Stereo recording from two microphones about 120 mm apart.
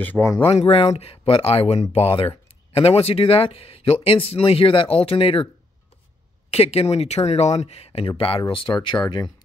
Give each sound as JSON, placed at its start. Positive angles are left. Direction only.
{"t": 0.0, "sound": "speech", "side_deg": 15}
{"t": 0.4, "sound": "speech", "side_deg": 55}
{"t": 6.5, "sound": "speech", "side_deg": 55}